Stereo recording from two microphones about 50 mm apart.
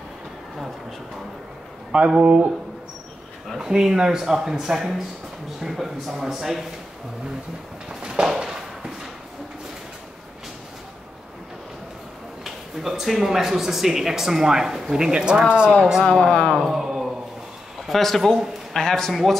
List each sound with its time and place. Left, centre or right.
1.9 s speech: centre
3.5 s a man's voice: centre
7.9 s a sound: centre
12.4 s speech: centre
15.7 s a man's voice: centre
16.0 s speech: centre
16.5 s speech: centre
17.8 s a man's voice: centre